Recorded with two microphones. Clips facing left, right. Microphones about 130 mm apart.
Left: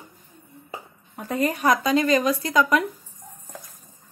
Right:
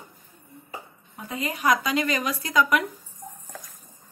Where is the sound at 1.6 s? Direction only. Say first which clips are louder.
Left 3 dB; 30° left (ahead or behind).